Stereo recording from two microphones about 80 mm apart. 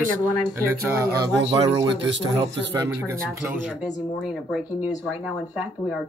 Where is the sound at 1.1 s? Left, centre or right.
Right.